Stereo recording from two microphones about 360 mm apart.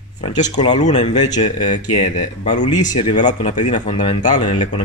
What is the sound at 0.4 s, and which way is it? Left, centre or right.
Speech, centre.